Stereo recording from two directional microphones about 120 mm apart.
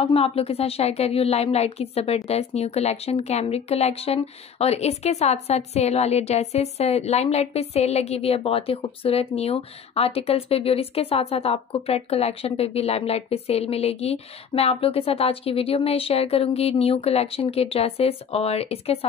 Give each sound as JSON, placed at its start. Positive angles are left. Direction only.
{"t": 0.0, "sound": "a woman's voice", "side_deg": 55}